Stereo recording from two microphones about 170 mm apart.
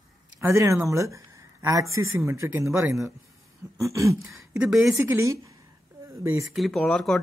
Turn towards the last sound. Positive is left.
turn(degrees=0)  # may be behind; listen again after turning